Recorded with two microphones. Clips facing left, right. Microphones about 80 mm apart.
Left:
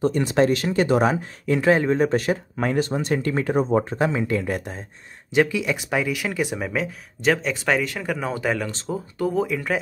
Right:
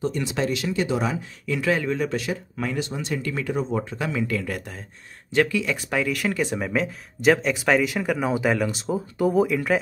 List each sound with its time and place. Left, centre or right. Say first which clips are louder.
0.0 s speech: left 6 dB; left; by 9.8 s centre